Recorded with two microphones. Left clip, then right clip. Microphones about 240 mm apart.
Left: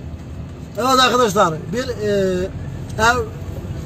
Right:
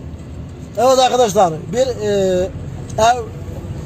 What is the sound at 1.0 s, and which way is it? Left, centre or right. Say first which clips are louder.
Speech: right 2 dB; left.